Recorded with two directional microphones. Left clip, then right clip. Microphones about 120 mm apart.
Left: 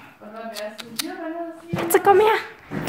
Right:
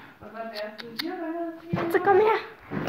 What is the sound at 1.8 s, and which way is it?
Speech, 35° left (ahead or behind).